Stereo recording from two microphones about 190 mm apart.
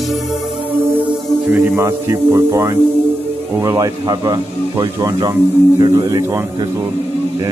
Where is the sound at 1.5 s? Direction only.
15° right (ahead or behind).